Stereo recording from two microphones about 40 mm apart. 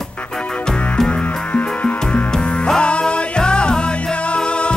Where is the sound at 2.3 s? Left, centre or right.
Left.